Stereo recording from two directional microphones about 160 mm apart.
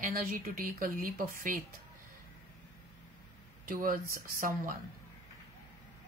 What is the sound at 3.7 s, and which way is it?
Speech, 60° right (ahead or behind).